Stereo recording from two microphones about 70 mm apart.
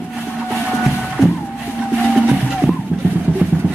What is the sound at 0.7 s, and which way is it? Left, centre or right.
Printer, centre.